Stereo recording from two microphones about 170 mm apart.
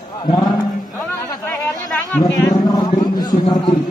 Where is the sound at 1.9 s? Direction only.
Centre (ahead or behind).